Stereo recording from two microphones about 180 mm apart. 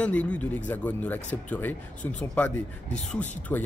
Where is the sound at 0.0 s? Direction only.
5° left (ahead or behind).